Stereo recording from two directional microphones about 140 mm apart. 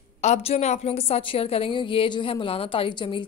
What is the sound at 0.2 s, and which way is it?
A woman's voice, 50° left (ahead or behind).